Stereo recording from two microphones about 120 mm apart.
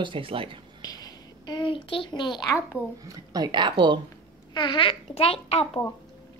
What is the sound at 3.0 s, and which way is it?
Speech, 35° right (ahead or behind).